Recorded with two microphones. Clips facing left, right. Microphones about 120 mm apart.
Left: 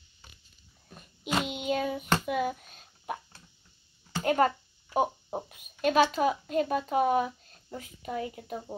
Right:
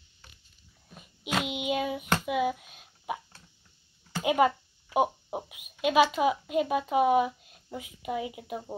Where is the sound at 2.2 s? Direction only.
5° right (ahead or behind).